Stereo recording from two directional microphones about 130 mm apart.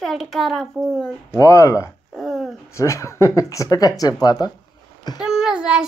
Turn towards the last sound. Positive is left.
turn(degrees=-5)  # may be behind; listen again after turning